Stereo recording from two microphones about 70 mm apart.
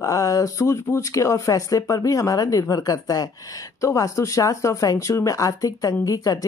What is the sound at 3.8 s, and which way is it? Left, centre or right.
Speech, left.